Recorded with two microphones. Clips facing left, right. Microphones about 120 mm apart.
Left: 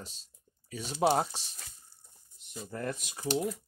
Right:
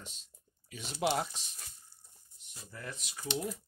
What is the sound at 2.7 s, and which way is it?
Speech, 50° left (ahead or behind).